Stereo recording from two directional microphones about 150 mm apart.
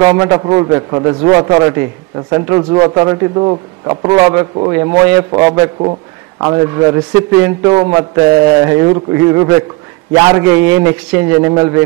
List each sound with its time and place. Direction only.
0.0 s a man's voice: 20° right (ahead or behind)